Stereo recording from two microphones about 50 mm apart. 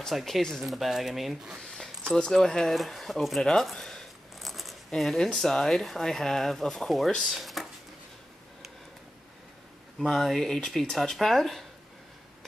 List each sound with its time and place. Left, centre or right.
0.1 s speech: centre
0.6 s speech: centre
1.6 s a sound: centre
2.3 s speech: centre
4.4 s a sound: centre
5.3 s speech: centre
9.9 s speech: centre